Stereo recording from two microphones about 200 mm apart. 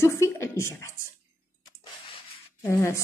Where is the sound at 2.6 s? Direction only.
15° left (ahead or behind).